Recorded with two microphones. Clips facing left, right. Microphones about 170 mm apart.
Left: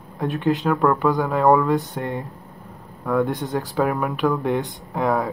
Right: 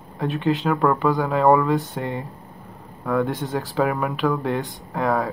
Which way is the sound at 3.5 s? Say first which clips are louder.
Even; centre (ahead or behind).